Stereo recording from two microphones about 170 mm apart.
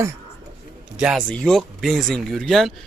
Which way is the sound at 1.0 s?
Centre (ahead or behind).